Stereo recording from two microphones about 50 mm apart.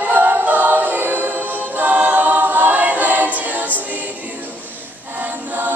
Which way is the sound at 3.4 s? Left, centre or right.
Right.